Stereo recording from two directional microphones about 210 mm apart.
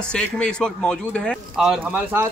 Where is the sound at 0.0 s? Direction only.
5° left (ahead or behind).